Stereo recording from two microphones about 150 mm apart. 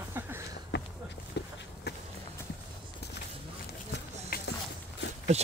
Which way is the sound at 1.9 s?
90° left.